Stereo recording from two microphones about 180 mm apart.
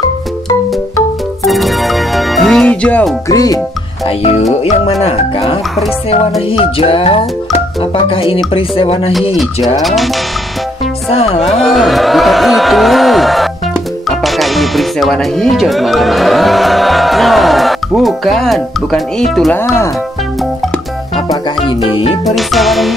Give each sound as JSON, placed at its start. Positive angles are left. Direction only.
{"t": 1.4, "sound": "music", "side_deg": 0}
{"t": 3.3, "sound": "speech", "side_deg": 20}
{"t": 5.0, "sound": "music", "side_deg": 30}
{"t": 9.8, "sound": "music", "side_deg": 0}
{"t": 11.1, "sound": "music", "side_deg": 35}
{"t": 11.5, "sound": "a man's voice", "side_deg": 0}
{"t": 21.6, "sound": "music", "side_deg": 30}
{"t": 22.2, "sound": "music", "side_deg": 0}